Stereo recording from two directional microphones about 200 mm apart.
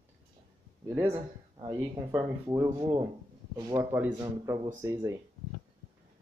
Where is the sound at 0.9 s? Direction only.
15° right (ahead or behind).